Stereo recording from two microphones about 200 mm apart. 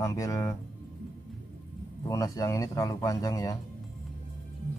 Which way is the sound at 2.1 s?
15° left (ahead or behind).